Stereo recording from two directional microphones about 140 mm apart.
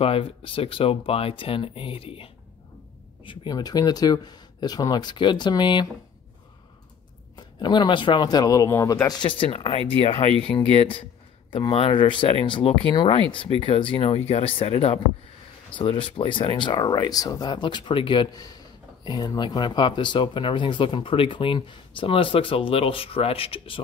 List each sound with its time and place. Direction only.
0.0 s speech: 40° left (ahead or behind)
3.3 s speech: 30° left (ahead or behind)
7.3 s speech: 35° left (ahead or behind)